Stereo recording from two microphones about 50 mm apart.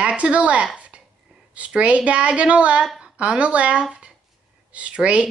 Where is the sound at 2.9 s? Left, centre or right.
Centre.